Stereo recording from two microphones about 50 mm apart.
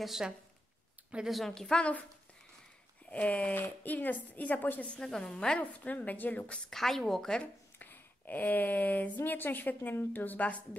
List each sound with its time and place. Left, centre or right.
0.0 s a woman's voice: centre
1.5 s a woman's voice: centre
1.8 s a woman's voice: left
3.1 s a woman's voice: left
4.8 s a woman's voice: left
6.5 s a woman's voice: centre
7.8 s speech: left